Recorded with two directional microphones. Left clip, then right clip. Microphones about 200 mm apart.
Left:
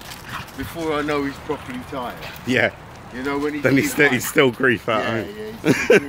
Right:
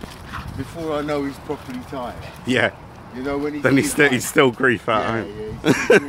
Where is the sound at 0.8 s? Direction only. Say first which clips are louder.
Left 1 dB; 55° right (ahead or behind).